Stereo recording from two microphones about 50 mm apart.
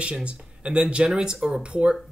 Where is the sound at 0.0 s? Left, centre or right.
Right.